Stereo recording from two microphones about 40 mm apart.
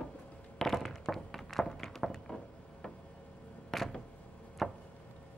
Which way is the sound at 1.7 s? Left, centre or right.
Centre.